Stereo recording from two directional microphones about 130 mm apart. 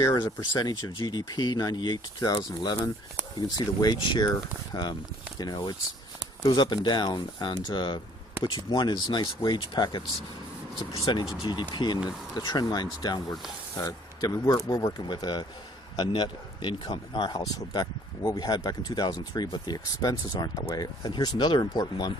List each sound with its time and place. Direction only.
0.0 s speech: 25° left (ahead or behind)
11.1 s speech: 35° left (ahead or behind)